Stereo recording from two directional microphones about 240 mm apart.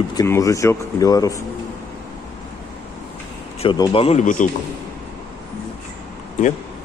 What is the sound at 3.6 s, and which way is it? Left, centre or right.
Speech, left.